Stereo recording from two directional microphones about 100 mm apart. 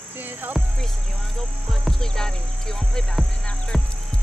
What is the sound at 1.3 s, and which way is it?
Music, 5° left (ahead or behind).